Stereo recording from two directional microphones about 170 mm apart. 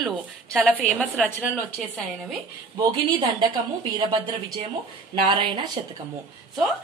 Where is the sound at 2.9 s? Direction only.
25° right (ahead or behind).